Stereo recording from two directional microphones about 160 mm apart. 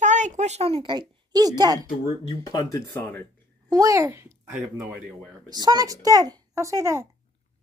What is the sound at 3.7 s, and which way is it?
Speech, 20° right (ahead or behind).